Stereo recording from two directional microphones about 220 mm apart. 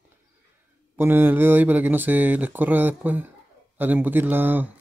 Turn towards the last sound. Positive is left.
turn(degrees=-10)  # may be behind; listen again after turning